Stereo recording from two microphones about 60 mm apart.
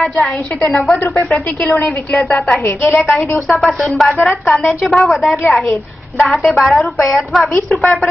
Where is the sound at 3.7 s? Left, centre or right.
Centre.